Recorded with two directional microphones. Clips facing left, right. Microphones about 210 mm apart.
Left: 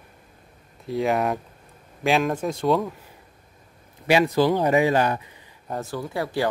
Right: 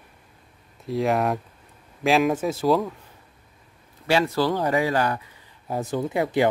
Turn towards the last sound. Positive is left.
turn(degrees=-20)  # may be behind; listen again after turning